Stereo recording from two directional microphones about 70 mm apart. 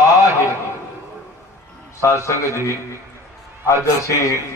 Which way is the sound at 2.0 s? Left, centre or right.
Left.